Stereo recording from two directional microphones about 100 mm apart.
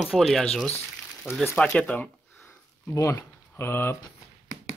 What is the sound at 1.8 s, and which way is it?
Speech, 15° left (ahead or behind).